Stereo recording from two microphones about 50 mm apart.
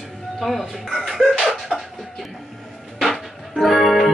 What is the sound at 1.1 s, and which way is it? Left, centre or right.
Music, centre.